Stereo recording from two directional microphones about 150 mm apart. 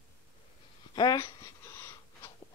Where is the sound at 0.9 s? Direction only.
25° left (ahead or behind).